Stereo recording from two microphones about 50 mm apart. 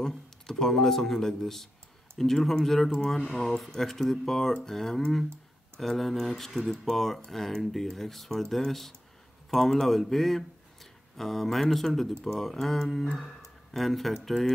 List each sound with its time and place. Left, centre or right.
0.0 s speech: centre